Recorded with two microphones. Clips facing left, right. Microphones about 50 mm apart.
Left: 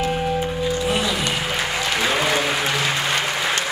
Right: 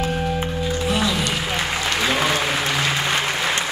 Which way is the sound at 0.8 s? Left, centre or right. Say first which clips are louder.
Even; left.